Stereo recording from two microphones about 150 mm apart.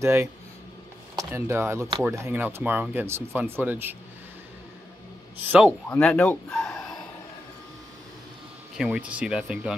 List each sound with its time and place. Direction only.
0.0 s speech: 15° right (ahead or behind)
5.5 s speech: 10° right (ahead or behind)
5.9 s speech: 10° left (ahead or behind)
8.7 s speech: 5° right (ahead or behind)